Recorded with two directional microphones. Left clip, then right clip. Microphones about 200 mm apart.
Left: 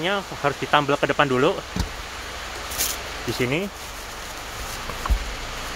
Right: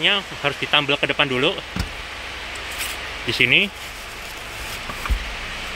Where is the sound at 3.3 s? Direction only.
5° right (ahead or behind).